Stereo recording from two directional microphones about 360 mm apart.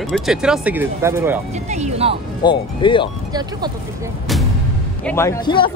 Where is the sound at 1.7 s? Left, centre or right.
Centre.